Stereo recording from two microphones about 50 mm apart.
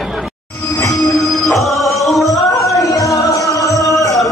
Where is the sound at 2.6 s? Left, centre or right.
Left.